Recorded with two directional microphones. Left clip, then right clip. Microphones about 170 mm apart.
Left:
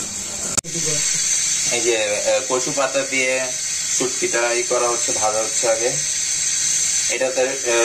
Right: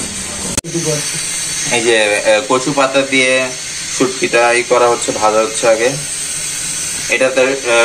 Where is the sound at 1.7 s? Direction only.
10° left (ahead or behind).